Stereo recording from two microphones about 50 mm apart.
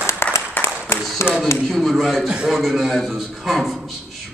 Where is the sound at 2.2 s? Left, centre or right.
Centre.